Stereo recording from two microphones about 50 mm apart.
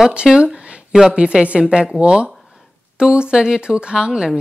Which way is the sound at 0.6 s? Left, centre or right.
Right.